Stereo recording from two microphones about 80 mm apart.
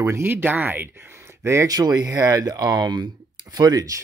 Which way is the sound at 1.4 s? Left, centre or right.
Right.